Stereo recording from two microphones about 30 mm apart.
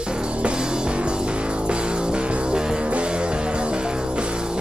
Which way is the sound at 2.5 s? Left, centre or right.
Right.